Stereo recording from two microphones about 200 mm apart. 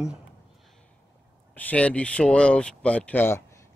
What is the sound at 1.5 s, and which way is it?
Speech, 10° left (ahead or behind).